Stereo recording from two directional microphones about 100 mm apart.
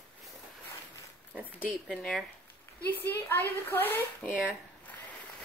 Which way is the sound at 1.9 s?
Centre (ahead or behind).